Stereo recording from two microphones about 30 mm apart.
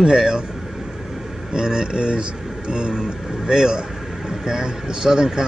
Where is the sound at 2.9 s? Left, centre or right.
Centre.